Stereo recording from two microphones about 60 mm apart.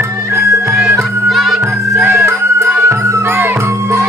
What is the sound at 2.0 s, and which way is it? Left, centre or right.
Music, right.